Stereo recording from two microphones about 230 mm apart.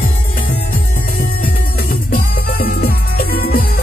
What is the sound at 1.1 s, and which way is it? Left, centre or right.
Music, left.